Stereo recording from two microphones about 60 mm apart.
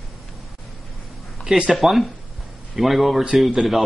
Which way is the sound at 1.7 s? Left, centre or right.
Centre.